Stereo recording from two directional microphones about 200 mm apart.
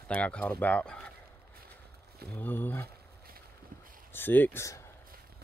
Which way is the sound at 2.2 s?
10° left (ahead or behind).